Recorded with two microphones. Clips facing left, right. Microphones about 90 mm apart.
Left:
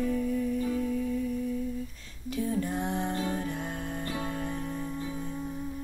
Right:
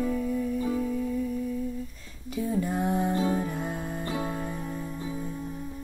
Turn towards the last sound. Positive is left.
turn(degrees=-5)  # may be behind; listen again after turning